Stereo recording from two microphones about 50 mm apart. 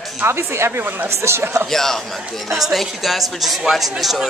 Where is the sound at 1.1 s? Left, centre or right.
Right.